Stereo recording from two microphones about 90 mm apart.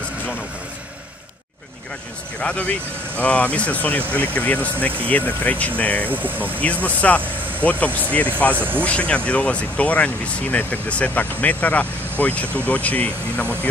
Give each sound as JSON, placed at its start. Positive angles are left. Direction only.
{"t": 2.4, "sound": "speech", "side_deg": 15}
{"t": 6.0, "sound": "speech", "side_deg": -20}
{"t": 6.6, "sound": "speech", "side_deg": 15}
{"t": 8.5, "sound": "speech", "side_deg": -20}
{"t": 8.8, "sound": "speech", "side_deg": 15}